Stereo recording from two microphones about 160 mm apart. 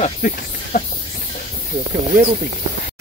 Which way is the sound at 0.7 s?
65° left (ahead or behind).